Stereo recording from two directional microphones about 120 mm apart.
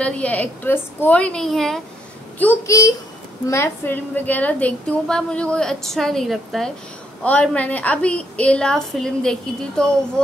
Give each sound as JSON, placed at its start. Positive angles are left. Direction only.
{"t": 0.0, "sound": "a woman's voice", "side_deg": 10}
{"t": 2.6, "sound": "a woman's voice", "side_deg": 25}